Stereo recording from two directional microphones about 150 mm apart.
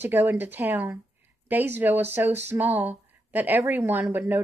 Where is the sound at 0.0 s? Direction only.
10° right (ahead or behind).